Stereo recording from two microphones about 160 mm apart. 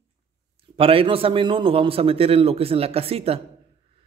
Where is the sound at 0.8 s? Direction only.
35° right (ahead or behind).